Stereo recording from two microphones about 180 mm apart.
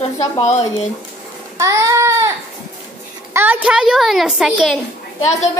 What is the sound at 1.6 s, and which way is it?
Child singing, 15° right (ahead or behind).